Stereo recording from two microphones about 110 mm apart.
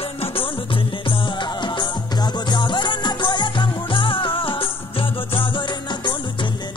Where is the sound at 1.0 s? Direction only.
45° left (ahead or behind).